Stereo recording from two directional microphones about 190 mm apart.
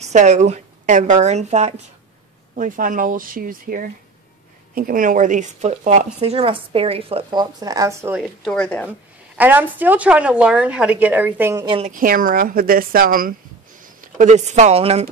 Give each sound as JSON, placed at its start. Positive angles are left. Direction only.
{"t": 0.0, "sound": "a woman's voice", "side_deg": -40}
{"t": 8.2, "sound": "speech", "side_deg": 0}
{"t": 9.4, "sound": "a woman's voice", "side_deg": -10}
{"t": 11.6, "sound": "a woman's voice", "side_deg": -25}
{"t": 11.9, "sound": "speech", "side_deg": -45}